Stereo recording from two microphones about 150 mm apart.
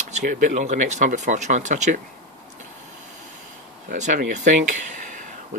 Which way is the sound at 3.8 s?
55° right (ahead or behind).